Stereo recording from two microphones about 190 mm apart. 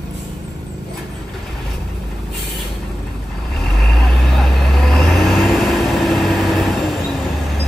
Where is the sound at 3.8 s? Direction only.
5° left (ahead or behind).